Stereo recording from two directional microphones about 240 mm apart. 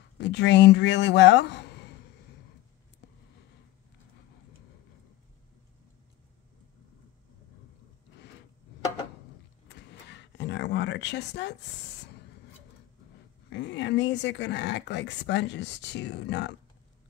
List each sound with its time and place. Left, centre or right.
0.2 s speech: left
9.7 s a sound: left
13.5 s speech: left